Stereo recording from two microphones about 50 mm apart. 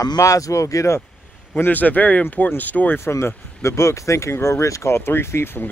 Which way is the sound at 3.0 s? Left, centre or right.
Left.